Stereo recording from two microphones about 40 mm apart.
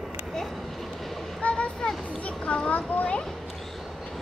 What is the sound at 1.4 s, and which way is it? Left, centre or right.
Vehicle, left.